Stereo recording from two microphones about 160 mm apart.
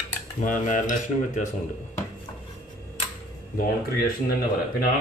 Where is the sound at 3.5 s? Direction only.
70° left (ahead or behind).